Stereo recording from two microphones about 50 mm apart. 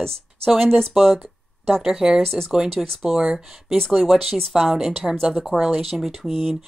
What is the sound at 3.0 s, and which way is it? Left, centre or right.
Speech, centre.